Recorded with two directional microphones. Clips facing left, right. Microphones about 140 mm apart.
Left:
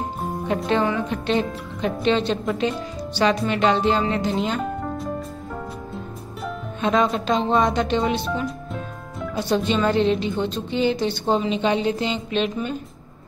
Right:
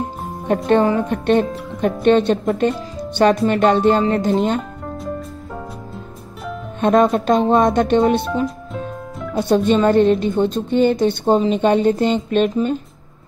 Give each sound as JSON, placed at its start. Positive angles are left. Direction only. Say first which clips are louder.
{"t": 0.5, "sound": "a woman's voice", "louder": "right 7 dB", "side_deg": -50}
{"t": 6.8, "sound": "a woman's voice", "louder": "right 6 dB", "side_deg": -50}
{"t": 9.4, "sound": "a woman's voice", "louder": "right 6 dB", "side_deg": -50}